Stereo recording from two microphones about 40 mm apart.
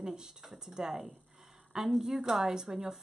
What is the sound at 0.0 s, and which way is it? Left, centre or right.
Speech, centre.